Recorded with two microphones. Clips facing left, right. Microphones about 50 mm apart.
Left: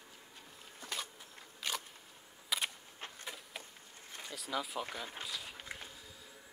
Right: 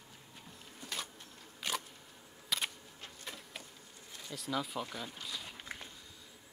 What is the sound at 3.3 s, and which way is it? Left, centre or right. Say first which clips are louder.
Insect: right 2 dB; centre.